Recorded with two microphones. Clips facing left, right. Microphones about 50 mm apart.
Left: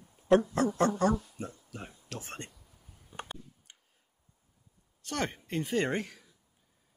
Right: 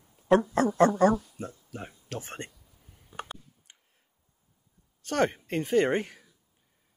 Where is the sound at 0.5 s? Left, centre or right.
Right.